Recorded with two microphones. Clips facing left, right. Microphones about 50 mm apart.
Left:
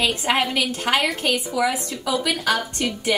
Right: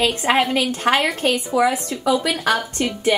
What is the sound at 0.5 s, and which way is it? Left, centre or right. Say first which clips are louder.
A woman's voice: right 3 dB; right.